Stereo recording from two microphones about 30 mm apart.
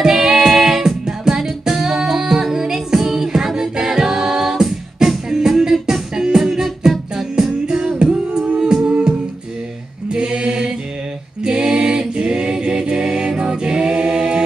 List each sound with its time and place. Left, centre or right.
0.0 s music: centre
0.5 s singing: centre
3.7 s a capella: centre
5.0 s music: right
8.0 s female singing: right
8.5 s music: right
10.1 s mantra: right
11.6 s music: right